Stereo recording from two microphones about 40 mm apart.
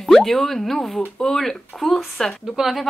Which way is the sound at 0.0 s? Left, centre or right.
Centre.